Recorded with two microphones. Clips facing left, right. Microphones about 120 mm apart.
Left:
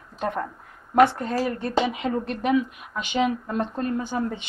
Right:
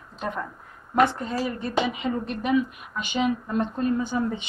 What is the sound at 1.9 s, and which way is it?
A woman's voice, 65° left (ahead or behind).